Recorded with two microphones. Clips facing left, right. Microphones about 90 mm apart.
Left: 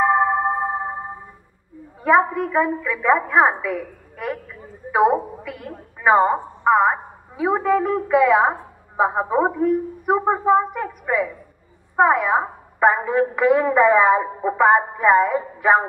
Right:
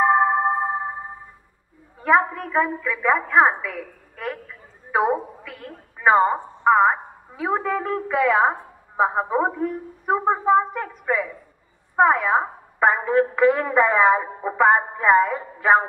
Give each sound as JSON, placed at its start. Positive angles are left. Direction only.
{"t": 0.0, "sound": "music", "side_deg": -5}
{"t": 2.0, "sound": "a woman's voice", "side_deg": 15}
{"t": 4.9, "sound": "a woman's voice", "side_deg": 10}